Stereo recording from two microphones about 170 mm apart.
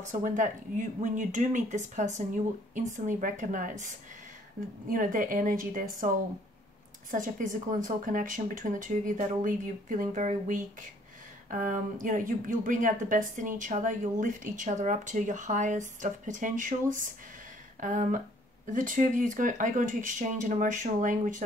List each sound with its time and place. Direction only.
0.0 s speech: 50° right (ahead or behind)
7.1 s speech: 50° right (ahead or behind)
17.7 s speech: 50° right (ahead or behind)